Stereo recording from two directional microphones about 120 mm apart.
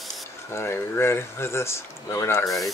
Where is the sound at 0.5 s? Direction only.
20° left (ahead or behind).